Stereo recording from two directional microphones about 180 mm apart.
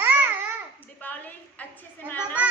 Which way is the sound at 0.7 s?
10° left (ahead or behind).